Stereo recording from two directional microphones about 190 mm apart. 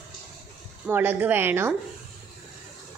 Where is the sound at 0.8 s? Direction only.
10° right (ahead or behind).